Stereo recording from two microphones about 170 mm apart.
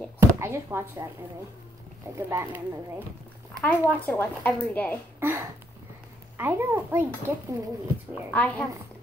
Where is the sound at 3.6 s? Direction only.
10° left (ahead or behind).